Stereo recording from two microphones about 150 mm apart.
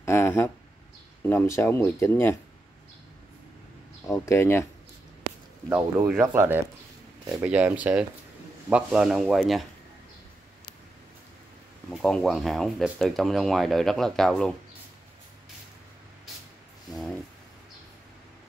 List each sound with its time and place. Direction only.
0.0 s a sound: 15° left (ahead or behind)
1.2 s speech: 15° left (ahead or behind)
4.0 s speech: 15° left (ahead or behind)
5.7 s speech: 15° right (ahead or behind)
11.9 s speech: 5° left (ahead or behind)
16.9 s speech: 5° left (ahead or behind)